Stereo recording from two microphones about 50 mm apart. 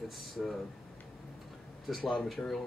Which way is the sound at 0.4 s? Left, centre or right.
Centre.